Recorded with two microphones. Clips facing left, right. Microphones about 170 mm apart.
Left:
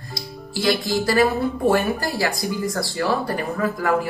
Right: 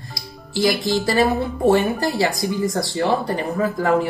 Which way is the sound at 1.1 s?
20° right (ahead or behind).